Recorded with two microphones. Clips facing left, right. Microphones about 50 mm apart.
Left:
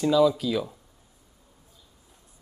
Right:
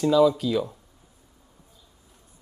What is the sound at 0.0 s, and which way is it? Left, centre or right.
Speech, centre.